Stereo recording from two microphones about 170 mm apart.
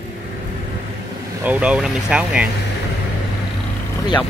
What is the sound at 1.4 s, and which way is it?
Speech, 10° right (ahead or behind).